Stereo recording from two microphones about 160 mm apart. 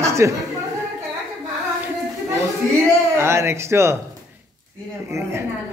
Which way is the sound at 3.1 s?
15° right (ahead or behind).